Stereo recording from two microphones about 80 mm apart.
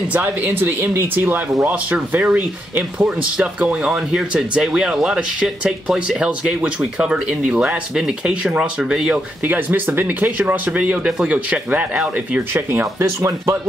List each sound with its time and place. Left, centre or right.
0.1 s speech: right
9.4 s speech: right
12.5 s speech: right